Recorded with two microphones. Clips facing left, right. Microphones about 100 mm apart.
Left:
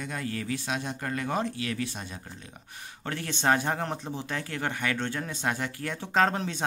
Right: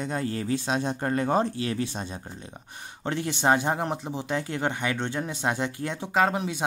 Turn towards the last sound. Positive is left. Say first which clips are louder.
# right 1 dB
turn(degrees=-10)  # may be behind; listen again after turning